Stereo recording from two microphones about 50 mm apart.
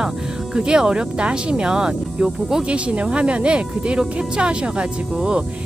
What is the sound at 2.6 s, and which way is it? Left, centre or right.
Speech, right.